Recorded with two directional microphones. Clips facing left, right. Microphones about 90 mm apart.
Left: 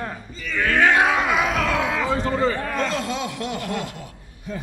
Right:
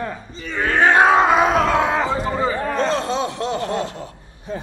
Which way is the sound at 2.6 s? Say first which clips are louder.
Right 4 dB; 30° right (ahead or behind).